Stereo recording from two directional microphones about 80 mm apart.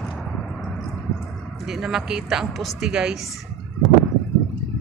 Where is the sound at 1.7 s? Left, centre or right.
Centre.